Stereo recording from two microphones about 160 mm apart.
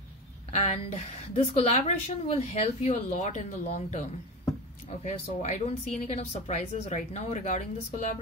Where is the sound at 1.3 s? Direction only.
45° left (ahead or behind).